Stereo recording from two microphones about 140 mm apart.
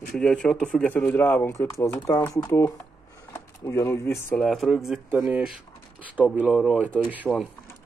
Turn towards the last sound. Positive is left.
turn(degrees=5)  # may be behind; listen again after turning